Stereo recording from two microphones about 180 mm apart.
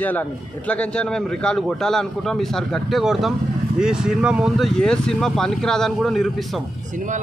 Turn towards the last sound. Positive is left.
turn(degrees=0)  # may be behind; listen again after turning